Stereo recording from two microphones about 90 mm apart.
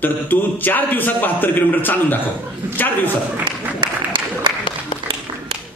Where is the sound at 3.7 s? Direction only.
60° right (ahead or behind).